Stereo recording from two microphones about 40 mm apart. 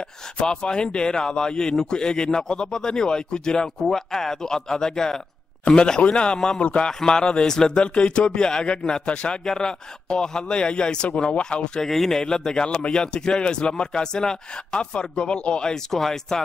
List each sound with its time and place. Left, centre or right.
0.4 s speech: left
6.6 s a man's voice: left
6.9 s speech: centre
7.8 s speech: left
11.8 s speech: centre
15.7 s speech: centre